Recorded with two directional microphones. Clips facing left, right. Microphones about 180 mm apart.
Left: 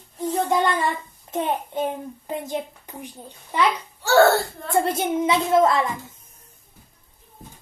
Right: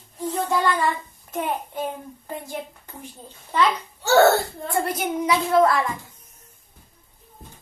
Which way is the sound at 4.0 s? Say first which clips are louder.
Even; 20° right (ahead or behind).